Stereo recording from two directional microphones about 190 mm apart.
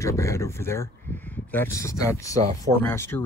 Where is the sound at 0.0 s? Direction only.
15° left (ahead or behind).